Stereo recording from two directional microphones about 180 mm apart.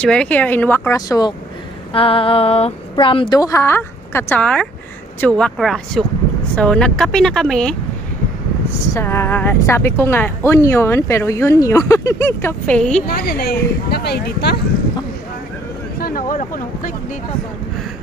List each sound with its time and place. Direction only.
0.0 s speech: 5° left (ahead or behind)
1.9 s speech: 30° left (ahead or behind); by 7.7 s 5° left (ahead or behind)
8.9 s speech: 15° left (ahead or behind)
13.0 s speech: 60° left (ahead or behind)
16.0 s a sound: 50° left (ahead or behind)